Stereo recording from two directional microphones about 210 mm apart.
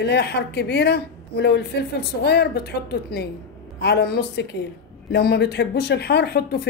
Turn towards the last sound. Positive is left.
turn(degrees=50)  # may be behind; listen again after turning